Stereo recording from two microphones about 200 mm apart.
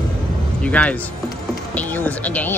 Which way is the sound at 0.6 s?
5° left (ahead or behind).